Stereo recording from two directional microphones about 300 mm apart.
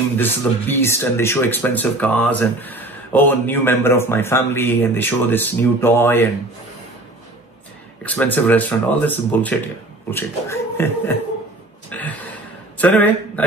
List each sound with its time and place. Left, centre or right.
0.2 s speech: centre
8.0 s speech: centre
11.9 s a sound: centre
12.7 s speech: centre